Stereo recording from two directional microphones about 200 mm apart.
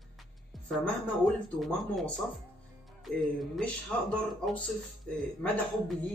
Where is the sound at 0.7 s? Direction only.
Centre (ahead or behind).